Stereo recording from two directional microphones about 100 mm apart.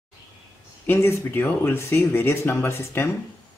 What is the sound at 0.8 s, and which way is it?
Speech, 25° left (ahead or behind).